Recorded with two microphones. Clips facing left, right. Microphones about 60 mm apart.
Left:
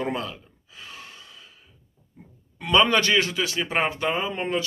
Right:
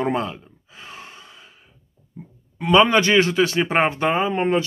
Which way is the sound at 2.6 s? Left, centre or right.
Right.